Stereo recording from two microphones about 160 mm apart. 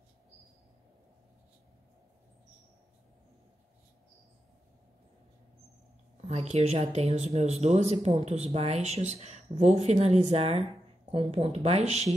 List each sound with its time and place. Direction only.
6.2 s speech: 45° right (ahead or behind)